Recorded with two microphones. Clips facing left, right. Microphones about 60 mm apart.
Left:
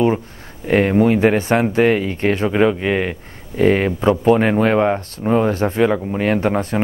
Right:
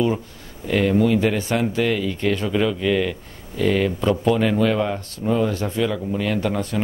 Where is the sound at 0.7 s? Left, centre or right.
Left.